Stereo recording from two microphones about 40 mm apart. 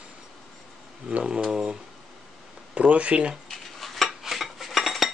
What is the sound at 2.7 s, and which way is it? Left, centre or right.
Speech, right.